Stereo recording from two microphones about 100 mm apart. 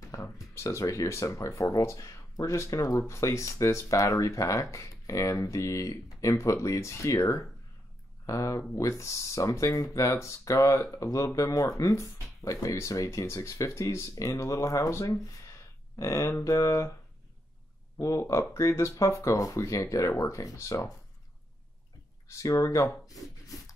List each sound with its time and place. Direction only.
0.1 s speech: 30° left (ahead or behind)
17.9 s speech: 30° left (ahead or behind)
22.3 s speech: 30° left (ahead or behind)